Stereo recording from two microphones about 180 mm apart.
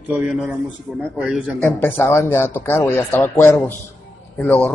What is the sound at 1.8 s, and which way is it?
A man's voice, 10° left (ahead or behind).